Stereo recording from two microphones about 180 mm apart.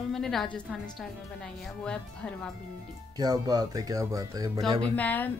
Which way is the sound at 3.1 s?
20° right (ahead or behind).